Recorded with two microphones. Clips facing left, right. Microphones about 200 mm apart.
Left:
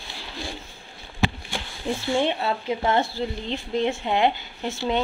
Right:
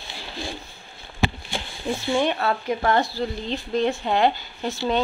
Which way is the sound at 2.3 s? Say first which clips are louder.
Right 2 dB; 20° left (ahead or behind).